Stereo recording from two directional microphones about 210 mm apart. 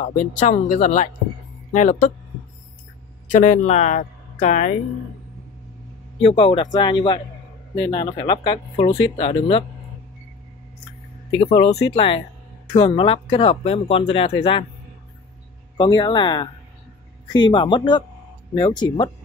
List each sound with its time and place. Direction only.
0.0 s speech: 35° left (ahead or behind)
3.3 s speech: 35° left (ahead or behind)
6.2 s speech: 25° left (ahead or behind)
11.3 s speech: 25° left (ahead or behind)
15.8 s speech: 20° left (ahead or behind)